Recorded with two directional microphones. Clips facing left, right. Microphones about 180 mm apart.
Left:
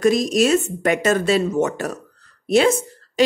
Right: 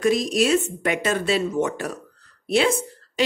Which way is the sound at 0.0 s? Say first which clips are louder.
Left 3 dB; 45° left (ahead or behind).